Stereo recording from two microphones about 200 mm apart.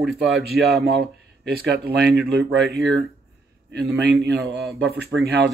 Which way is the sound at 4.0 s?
55° right (ahead or behind).